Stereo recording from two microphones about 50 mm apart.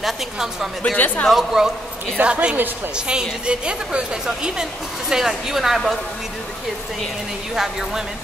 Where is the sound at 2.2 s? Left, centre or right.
Right; by 6.0 s centre.